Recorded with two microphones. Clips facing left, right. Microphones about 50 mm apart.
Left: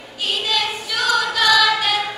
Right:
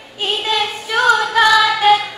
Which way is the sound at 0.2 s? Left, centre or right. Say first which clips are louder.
Right 3 dB; right.